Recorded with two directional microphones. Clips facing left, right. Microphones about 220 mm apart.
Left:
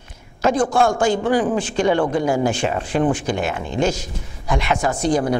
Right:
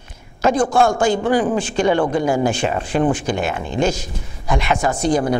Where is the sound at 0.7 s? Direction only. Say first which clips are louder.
Right 1 dB; 25° right (ahead or behind).